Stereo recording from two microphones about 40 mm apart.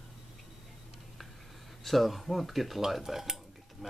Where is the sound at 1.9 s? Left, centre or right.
Centre.